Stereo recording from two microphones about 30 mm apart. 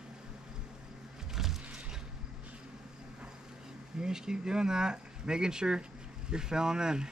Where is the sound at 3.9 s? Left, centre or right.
Right.